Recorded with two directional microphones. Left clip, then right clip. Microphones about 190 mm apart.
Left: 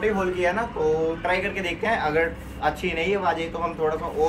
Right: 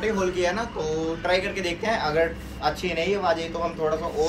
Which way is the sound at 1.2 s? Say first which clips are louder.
Even; 10° right (ahead or behind).